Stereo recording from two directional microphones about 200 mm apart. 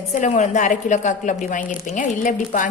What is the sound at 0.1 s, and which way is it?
A woman's voice, 35° left (ahead or behind).